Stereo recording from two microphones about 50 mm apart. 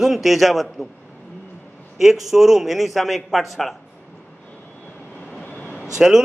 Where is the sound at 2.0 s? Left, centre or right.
Centre.